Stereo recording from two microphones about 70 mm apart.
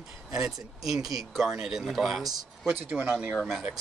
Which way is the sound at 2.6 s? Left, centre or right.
Centre.